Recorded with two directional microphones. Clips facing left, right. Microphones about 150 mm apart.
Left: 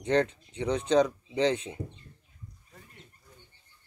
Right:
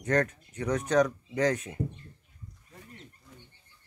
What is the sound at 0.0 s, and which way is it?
Speech, 25° left (ahead or behind).